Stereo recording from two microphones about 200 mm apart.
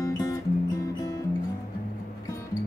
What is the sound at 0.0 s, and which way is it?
Music, 15° left (ahead or behind).